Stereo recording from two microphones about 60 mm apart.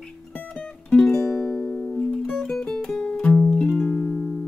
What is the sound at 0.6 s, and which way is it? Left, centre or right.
Music, centre.